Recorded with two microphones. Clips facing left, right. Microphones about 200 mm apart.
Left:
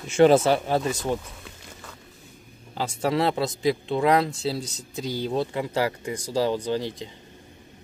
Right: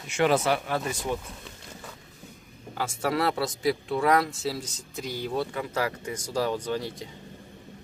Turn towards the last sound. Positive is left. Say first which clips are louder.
# left 3 dB
turn(degrees=35)  # may be behind; listen again after turning